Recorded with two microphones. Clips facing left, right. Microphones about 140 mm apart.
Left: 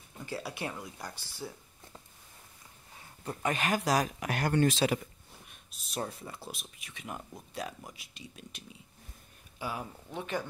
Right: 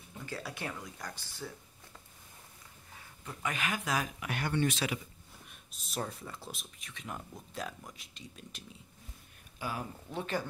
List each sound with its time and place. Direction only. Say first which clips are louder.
0.3 s speech: left 3 dB; 10° left (ahead or behind)
3.3 s speech: left 5 dB; 40° left (ahead or behind)
5.7 s speech: left 1 dB; centre (ahead or behind)
9.6 s speech: left 1 dB; 25° left (ahead or behind)